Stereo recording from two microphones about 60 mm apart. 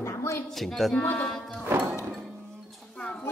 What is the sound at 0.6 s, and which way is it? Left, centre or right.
Speech, centre.